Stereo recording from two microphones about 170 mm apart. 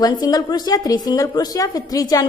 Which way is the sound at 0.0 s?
20° left (ahead or behind).